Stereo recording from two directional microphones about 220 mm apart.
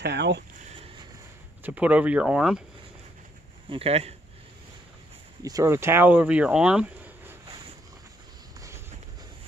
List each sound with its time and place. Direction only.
0.0 s speech: 50° right (ahead or behind)
0.7 s vehicle: 25° right (ahead or behind)
1.6 s speech: 5° right (ahead or behind)
3.7 s speech: 25° right (ahead or behind)
5.4 s speech: 15° right (ahead or behind)
8.5 s vehicle: 15° right (ahead or behind)